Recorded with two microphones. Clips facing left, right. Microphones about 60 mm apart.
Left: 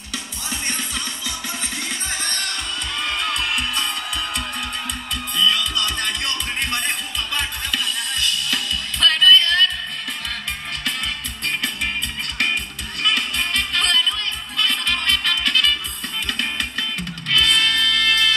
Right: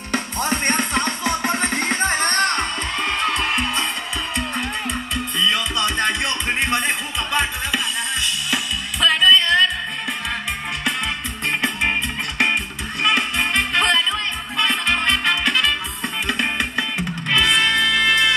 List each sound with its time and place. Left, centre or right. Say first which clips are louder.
0.1 s music: right 9 dB; right
5.1 s music: left 1 dB; right
11.4 s music: right 4 dB; right